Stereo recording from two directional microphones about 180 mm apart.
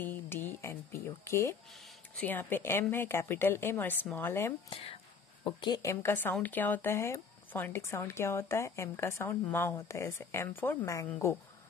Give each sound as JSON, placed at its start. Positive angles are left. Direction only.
{"t": 0.0, "sound": "a sound", "side_deg": 10}
{"t": 2.1, "sound": "speech", "side_deg": 10}
{"t": 5.4, "sound": "speech", "side_deg": 25}